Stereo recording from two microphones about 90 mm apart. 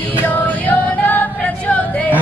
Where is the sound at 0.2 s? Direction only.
20° left (ahead or behind).